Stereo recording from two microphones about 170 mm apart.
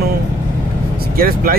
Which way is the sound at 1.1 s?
60° right (ahead or behind).